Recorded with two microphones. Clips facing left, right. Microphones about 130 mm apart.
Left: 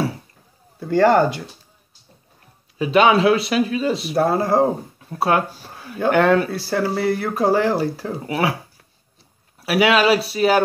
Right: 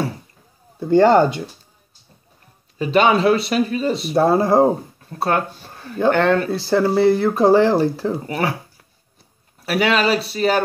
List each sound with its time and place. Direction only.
0.7 s speech: 20° right (ahead or behind)
2.8 s speech: 5° left (ahead or behind)
4.1 s speech: 25° right (ahead or behind)
5.1 s speech: 5° left (ahead or behind)
6.5 s speech: 25° right (ahead or behind)
8.3 s speech: 5° left (ahead or behind)
9.6 s speech: 5° left (ahead or behind)